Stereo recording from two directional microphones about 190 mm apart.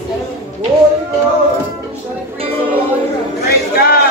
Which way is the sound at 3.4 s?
55° left (ahead or behind).